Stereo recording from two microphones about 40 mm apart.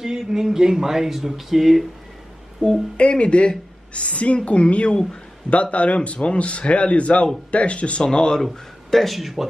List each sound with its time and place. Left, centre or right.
0.0 s speech: centre
2.6 s speech: centre
8.0 s speech: centre
8.4 s speech: centre